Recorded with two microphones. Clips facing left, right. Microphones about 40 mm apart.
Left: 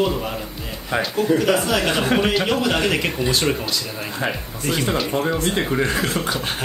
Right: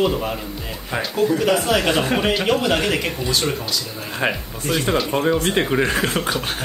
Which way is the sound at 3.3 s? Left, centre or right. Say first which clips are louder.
Left 1 dB; left.